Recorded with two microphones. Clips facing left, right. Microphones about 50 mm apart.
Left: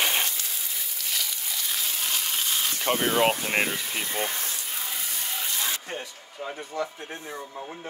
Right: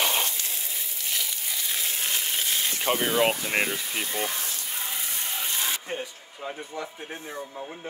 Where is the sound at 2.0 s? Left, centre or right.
Right.